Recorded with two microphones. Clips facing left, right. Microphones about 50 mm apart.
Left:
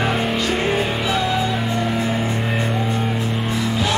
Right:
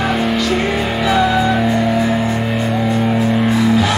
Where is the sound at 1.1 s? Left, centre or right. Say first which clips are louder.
Right 8 dB; centre.